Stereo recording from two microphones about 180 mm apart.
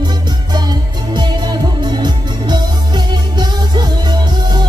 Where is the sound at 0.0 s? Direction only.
25° right (ahead or behind).